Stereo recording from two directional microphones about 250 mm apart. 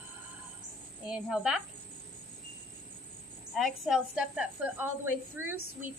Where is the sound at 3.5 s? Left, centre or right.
Centre.